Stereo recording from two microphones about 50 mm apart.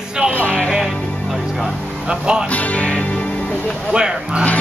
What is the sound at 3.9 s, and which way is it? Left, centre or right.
Speech, centre.